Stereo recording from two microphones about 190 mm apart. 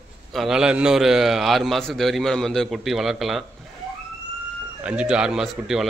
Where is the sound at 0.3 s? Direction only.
Centre (ahead or behind).